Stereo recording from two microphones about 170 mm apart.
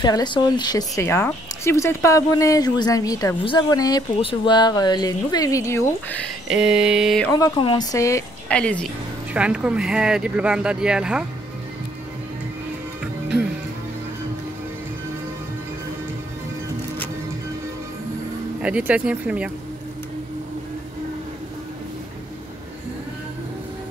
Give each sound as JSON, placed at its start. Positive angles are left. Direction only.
{"t": 0.0, "sound": "speech", "side_deg": 25}
{"t": 6.4, "sound": "speech", "side_deg": -5}
{"t": 7.3, "sound": "speech", "side_deg": 25}
{"t": 8.5, "sound": "a woman's voice", "side_deg": 5}
{"t": 9.3, "sound": "speech", "side_deg": -5}
{"t": 18.6, "sound": "speech", "side_deg": -10}